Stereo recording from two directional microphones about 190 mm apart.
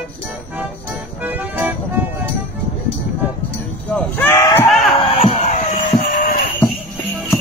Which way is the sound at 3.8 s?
10° left (ahead or behind).